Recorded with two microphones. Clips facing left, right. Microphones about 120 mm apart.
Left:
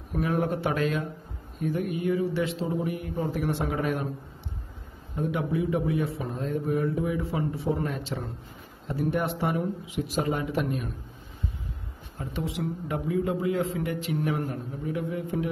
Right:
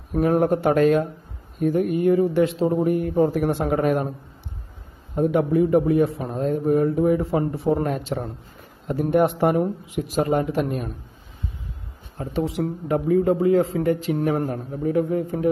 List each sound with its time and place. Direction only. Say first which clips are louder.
0.1 s a man's voice: right 8 dB; 45° right (ahead or behind)
5.1 s a man's voice: right 9 dB; 50° right (ahead or behind)
12.2 s a man's voice: right 7 dB; 40° right (ahead or behind)